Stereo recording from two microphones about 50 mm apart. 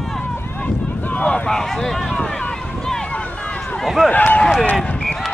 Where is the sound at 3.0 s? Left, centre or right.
Left.